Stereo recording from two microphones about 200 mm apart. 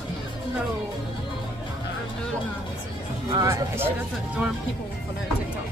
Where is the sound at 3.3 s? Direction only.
15° right (ahead or behind).